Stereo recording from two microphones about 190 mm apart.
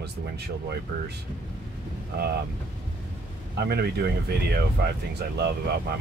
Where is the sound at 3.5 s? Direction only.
55° right (ahead or behind).